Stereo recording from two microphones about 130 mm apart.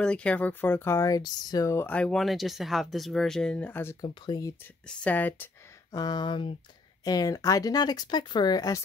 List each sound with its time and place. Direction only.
0.0 s speech: 10° left (ahead or behind); by 1.9 s 25° left (ahead or behind)
1.9 s speech: 10° left (ahead or behind)
4.0 s speech: 30° left (ahead or behind)
4.8 s speech: 10° left (ahead or behind)
5.9 s speech: 30° left (ahead or behind)